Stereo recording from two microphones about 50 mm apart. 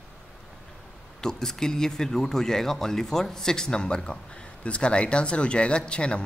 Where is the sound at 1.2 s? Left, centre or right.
Centre.